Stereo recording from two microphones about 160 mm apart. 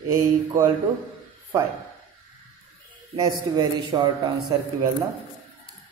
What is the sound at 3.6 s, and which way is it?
Speech, 30° right (ahead or behind).